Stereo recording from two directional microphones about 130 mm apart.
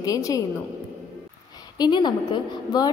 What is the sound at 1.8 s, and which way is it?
A woman's voice, 35° left (ahead or behind).